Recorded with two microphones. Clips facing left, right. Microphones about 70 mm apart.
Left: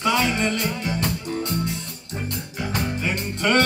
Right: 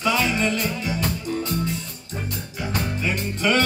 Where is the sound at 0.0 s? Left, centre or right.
Left.